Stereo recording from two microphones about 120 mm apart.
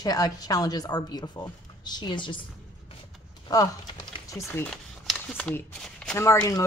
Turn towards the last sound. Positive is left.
turn(degrees=25)  # may be behind; listen again after turning